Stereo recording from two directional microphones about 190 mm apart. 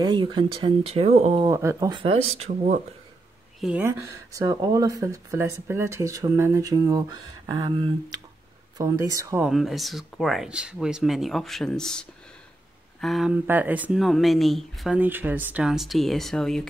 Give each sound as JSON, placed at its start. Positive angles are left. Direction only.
{"t": 0.0, "sound": "speech", "side_deg": -25}
{"t": 1.5, "sound": "speech", "side_deg": -15}
{"t": 3.6, "sound": "speech", "side_deg": -10}
{"t": 9.5, "sound": "speech", "side_deg": 0}